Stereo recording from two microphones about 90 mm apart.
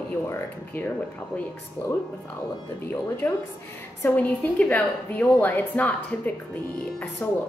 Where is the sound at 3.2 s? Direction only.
25° left (ahead or behind).